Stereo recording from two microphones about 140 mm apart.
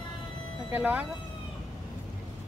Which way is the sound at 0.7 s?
10° right (ahead or behind).